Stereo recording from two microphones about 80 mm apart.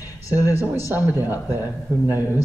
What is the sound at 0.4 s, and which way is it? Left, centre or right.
Speech, left.